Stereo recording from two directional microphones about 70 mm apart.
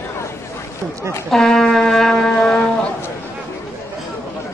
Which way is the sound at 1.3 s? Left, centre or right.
Centre.